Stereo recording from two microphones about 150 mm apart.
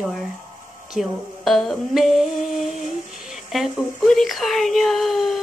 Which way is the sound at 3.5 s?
Centre (ahead or behind).